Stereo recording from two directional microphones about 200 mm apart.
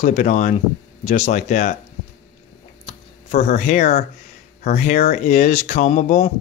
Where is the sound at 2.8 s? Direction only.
35° left (ahead or behind).